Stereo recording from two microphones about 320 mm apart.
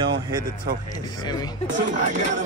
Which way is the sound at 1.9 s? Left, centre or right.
Right.